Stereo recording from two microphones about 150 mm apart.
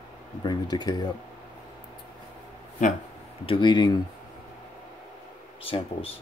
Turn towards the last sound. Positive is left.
turn(degrees=40)  # may be behind; listen again after turning